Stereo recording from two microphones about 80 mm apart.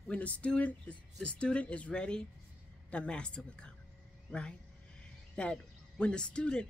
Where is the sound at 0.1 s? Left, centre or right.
Centre.